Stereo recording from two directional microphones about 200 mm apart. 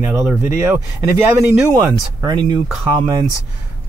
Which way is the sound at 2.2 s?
20° right (ahead or behind).